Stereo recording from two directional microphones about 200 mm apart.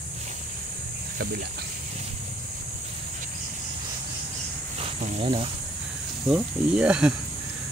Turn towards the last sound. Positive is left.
turn(degrees=-5)  # may be behind; listen again after turning